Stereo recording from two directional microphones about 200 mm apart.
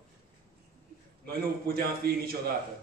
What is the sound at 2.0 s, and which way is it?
Speech, 50° right (ahead or behind).